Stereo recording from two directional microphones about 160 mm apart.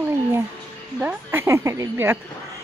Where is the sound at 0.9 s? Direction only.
10° right (ahead or behind).